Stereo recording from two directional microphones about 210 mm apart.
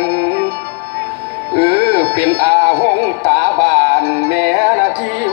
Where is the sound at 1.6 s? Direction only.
25° right (ahead or behind).